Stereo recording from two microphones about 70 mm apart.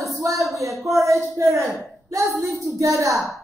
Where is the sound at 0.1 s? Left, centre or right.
Right.